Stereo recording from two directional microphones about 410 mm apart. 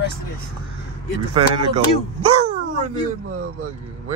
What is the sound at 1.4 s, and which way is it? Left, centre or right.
Speech, centre.